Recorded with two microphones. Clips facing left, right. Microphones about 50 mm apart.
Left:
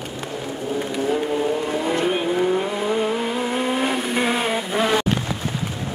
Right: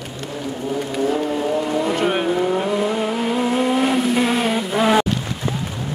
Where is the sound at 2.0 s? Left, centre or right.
Right.